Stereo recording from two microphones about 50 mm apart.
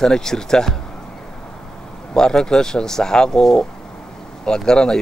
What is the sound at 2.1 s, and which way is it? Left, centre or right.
Speech, centre.